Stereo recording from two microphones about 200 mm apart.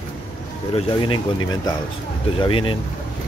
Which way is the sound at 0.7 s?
25° left (ahead or behind).